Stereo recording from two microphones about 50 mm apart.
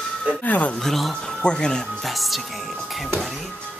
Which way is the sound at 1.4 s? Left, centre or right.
Centre.